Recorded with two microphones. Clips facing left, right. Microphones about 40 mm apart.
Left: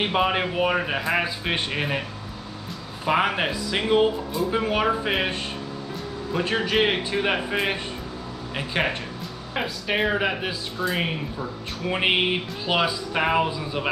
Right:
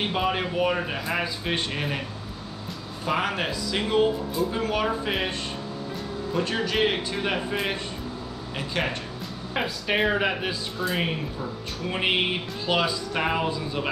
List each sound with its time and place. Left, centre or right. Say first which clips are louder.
0.0 s a man's voice: left 3 dB; left
3.1 s a man's voice: left 4 dB; left
6.3 s a man's voice: left 3 dB; left
9.5 s speech: even; centre